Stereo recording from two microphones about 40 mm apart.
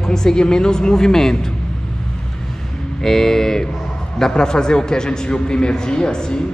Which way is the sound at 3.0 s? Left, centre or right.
Centre.